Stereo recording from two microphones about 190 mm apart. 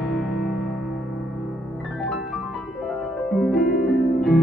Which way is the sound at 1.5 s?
Centre (ahead or behind).